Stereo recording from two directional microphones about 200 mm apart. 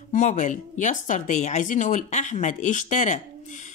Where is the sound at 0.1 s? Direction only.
40° left (ahead or behind).